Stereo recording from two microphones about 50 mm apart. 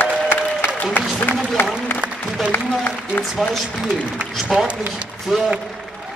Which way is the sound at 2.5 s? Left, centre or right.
Left.